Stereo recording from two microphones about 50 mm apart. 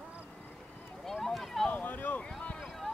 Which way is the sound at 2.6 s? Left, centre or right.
Centre.